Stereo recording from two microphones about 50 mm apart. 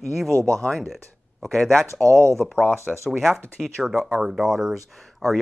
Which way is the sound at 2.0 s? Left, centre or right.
Right.